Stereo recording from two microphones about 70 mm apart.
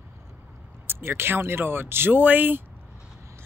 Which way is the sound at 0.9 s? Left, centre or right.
Right.